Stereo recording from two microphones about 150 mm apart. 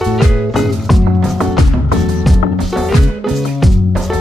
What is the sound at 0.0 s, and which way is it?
Music, centre (ahead or behind).